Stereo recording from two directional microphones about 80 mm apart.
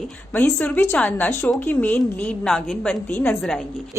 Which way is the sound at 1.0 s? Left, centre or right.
Centre.